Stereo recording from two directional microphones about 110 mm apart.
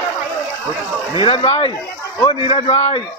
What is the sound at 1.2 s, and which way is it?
A man's voice, 55° left (ahead or behind).